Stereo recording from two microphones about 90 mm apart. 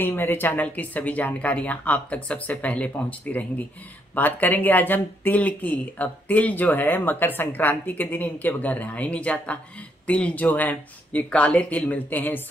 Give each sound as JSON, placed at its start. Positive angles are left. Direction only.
{"t": 0.0, "sound": "speech", "side_deg": 25}